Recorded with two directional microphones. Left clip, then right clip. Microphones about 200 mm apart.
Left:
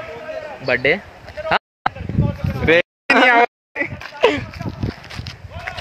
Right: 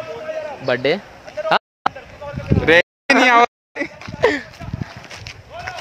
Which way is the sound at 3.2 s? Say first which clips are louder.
Right 2 dB; 65° right (ahead or behind).